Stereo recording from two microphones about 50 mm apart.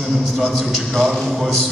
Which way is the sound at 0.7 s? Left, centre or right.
Centre.